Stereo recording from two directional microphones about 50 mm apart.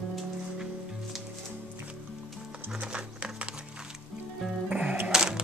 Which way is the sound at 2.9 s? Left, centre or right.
Right.